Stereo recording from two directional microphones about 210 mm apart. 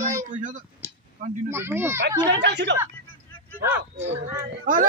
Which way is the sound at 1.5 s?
10° right (ahead or behind).